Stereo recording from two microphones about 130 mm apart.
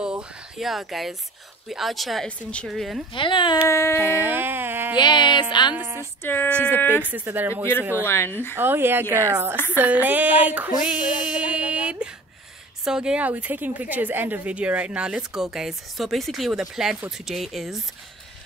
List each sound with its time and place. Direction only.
0.0 s a woman's voice: 5° right (ahead or behind)
3.1 s speech: 40° left (ahead or behind)
3.6 s a sound: 20° left (ahead or behind)
4.0 s a woman's voice: 15° right (ahead or behind)
4.9 s speech: 35° left (ahead or behind)
5.8 s speech: 20° right (ahead or behind)
6.2 s speech: 15° left (ahead or behind)
7.0 s a woman's voice: 15° right (ahead or behind)
8.0 s speech: 20° left (ahead or behind)
8.5 s a woman's voice: 15° right (ahead or behind)
11.2 s a sound: 10° right (ahead or behind)
12.8 s a woman's voice: 5° right (ahead or behind)